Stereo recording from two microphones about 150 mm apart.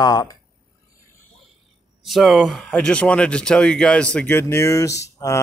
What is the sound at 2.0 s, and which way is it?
Speech, centre (ahead or behind).